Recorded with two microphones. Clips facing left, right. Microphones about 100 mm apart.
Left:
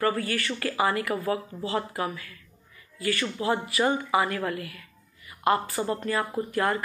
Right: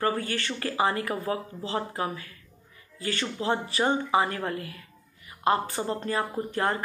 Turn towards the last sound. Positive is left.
turn(degrees=-30)  # may be behind; listen again after turning